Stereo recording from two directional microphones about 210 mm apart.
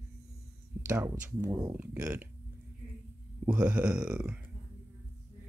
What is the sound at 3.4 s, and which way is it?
Speech, 5° right (ahead or behind).